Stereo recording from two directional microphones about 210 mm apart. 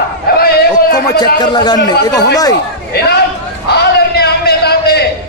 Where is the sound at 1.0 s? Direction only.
20° left (ahead or behind).